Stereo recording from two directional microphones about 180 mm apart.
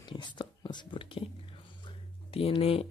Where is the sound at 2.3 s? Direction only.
35° left (ahead or behind).